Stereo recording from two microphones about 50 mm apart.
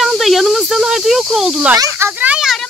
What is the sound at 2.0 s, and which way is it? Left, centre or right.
Speech, right.